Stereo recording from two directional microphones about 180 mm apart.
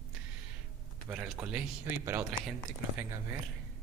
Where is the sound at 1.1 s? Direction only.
10° right (ahead or behind).